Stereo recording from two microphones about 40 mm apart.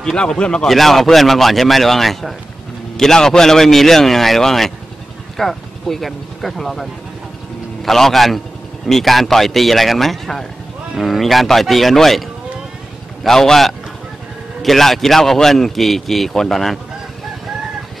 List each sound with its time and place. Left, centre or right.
0.0 s speech: centre
0.7 s a man's voice: centre